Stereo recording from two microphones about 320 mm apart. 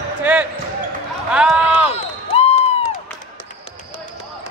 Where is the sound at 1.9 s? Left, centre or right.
Centre.